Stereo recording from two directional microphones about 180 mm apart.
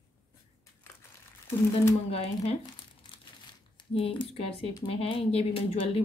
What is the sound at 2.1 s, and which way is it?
Speech, 35° left (ahead or behind).